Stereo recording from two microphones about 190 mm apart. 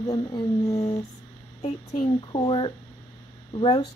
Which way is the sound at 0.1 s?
20° left (ahead or behind).